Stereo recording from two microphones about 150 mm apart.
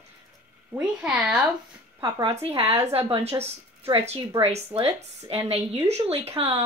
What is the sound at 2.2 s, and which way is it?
A woman's voice, 40° right (ahead or behind).